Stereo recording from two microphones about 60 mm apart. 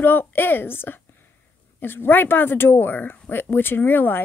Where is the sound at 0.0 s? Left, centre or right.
Left.